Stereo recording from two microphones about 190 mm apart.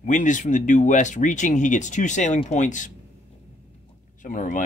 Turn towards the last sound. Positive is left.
turn(degrees=40)  # may be behind; listen again after turning